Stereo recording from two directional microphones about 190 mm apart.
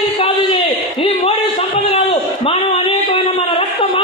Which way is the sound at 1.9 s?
35° left (ahead or behind).